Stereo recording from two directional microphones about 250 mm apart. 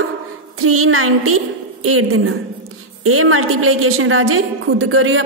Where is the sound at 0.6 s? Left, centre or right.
Right.